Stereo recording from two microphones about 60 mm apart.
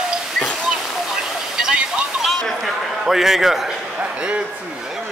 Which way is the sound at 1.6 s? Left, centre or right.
Centre.